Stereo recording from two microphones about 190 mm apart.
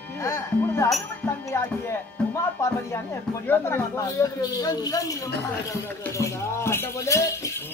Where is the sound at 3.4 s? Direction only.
10° left (ahead or behind).